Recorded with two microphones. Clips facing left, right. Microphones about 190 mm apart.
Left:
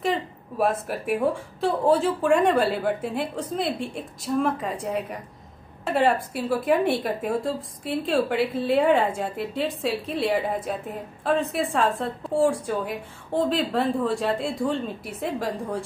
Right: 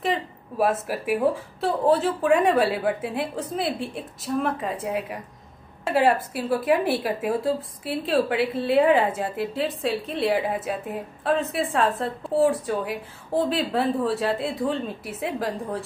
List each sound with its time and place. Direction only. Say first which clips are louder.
0.0 s a woman's voice: even; 5° right (ahead or behind)